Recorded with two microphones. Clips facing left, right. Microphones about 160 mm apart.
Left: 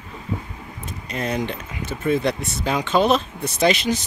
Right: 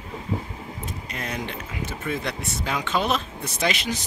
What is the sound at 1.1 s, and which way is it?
Speech, 30° left (ahead or behind).